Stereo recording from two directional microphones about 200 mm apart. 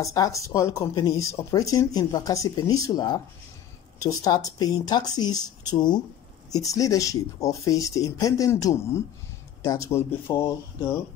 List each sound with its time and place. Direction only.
0.0 s a woman's voice: 15° left (ahead or behind)